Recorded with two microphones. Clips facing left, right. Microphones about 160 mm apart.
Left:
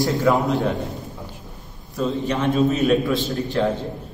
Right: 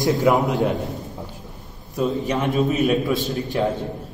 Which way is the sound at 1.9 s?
15° right (ahead or behind).